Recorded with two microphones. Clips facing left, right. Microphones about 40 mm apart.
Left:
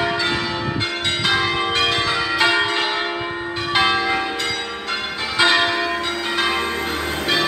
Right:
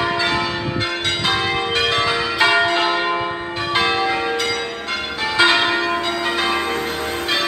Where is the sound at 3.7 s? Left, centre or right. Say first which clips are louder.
Left 1 dB; centre.